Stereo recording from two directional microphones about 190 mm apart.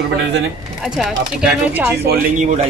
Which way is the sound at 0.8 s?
5° right (ahead or behind).